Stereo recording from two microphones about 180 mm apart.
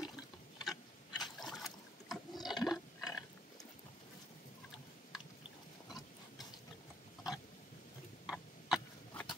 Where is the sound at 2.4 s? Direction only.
Centre (ahead or behind).